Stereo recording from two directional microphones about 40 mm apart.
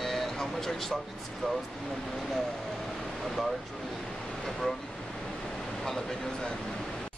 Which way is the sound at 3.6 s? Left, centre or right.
Centre.